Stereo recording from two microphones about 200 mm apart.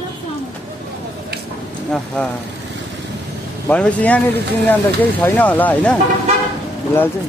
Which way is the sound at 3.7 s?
5° left (ahead or behind).